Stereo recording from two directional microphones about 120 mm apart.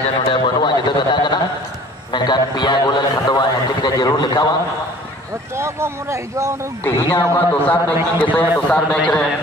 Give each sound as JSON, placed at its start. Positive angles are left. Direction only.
{"t": 0.3, "sound": "a man's voice", "side_deg": 40}
{"t": 5.6, "sound": "speech", "side_deg": -20}
{"t": 6.8, "sound": "a man's voice", "side_deg": 30}
{"t": 7.3, "sound": "a man's voice", "side_deg": 15}